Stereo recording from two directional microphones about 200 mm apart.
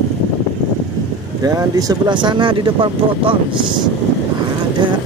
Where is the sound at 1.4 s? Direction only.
15° right (ahead or behind).